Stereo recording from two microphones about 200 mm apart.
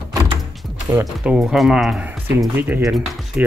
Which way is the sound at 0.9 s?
10° right (ahead or behind).